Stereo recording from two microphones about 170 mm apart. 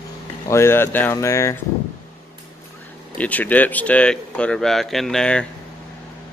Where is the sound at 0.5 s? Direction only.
15° left (ahead or behind).